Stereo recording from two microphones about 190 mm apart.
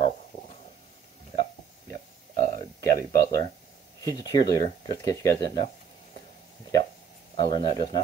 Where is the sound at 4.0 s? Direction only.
20° left (ahead or behind).